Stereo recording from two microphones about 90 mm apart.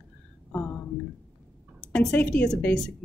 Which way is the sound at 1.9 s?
10° left (ahead or behind).